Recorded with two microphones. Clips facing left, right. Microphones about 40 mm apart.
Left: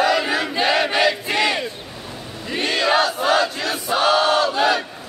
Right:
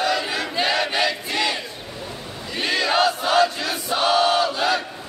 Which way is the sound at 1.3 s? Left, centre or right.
Centre.